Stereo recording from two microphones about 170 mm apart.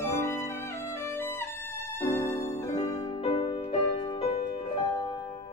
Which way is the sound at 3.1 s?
35° left (ahead or behind).